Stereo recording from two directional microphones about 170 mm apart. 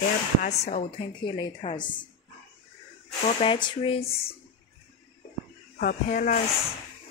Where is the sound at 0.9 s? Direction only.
25° left (ahead or behind).